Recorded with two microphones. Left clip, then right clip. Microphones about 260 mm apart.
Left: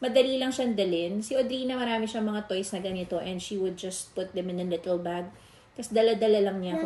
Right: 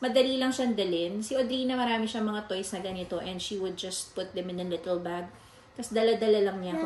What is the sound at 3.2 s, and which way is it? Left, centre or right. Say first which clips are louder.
Speech: left 2 dB; centre.